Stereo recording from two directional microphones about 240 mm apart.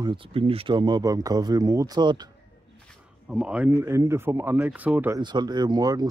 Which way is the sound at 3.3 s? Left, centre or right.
Centre.